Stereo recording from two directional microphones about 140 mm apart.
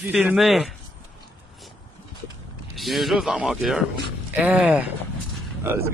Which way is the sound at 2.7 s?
Centre (ahead or behind).